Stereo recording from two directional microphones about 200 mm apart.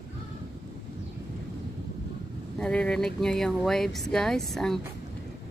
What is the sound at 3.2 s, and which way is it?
Speech, centre (ahead or behind).